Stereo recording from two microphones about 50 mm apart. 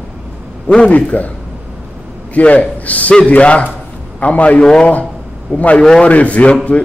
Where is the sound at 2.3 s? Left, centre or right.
Left.